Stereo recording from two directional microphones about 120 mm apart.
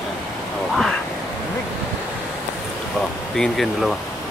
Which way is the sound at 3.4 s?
Centre (ahead or behind).